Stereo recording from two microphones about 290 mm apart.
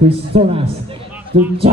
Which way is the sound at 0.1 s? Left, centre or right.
Centre.